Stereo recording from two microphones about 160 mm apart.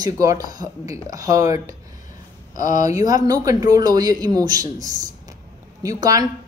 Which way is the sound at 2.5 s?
50° left (ahead or behind).